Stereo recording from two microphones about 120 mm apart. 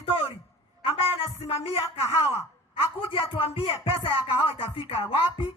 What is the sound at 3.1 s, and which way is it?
Speech, 50° left (ahead or behind).